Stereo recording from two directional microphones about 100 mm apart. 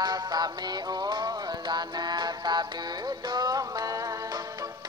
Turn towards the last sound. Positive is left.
turn(degrees=-35)  # may be behind; listen again after turning